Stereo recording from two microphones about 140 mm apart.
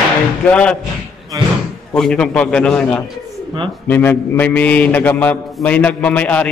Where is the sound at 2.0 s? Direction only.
5° left (ahead or behind).